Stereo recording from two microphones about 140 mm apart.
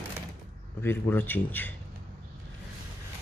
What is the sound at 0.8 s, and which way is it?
Speech, 15° left (ahead or behind).